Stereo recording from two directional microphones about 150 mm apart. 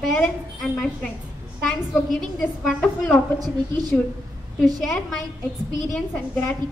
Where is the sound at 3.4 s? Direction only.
25° right (ahead or behind).